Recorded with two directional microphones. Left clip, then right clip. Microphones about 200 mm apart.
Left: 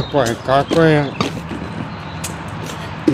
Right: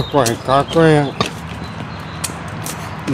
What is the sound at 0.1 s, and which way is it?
Speech, 20° right (ahead or behind).